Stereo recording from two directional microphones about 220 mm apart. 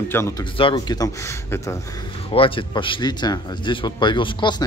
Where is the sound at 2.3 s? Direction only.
25° left (ahead or behind).